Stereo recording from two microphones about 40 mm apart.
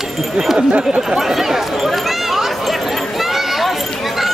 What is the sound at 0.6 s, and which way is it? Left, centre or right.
Speech, right.